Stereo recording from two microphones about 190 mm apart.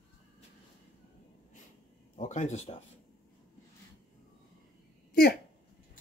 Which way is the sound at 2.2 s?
40° left (ahead or behind).